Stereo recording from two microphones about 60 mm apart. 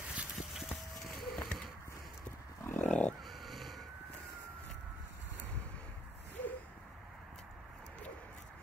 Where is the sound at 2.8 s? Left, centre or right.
Centre.